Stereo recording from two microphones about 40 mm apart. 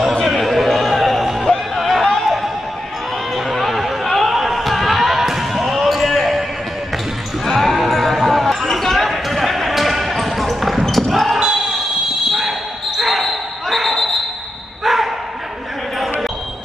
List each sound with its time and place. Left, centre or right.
0.4 s a sound: centre
2.1 s music: centre
3.3 s chatter: centre
7.4 s basketball bounce: centre
11.3 s basketball bounce: centre
12.3 s basketball bounce: centre
14.8 s dog: centre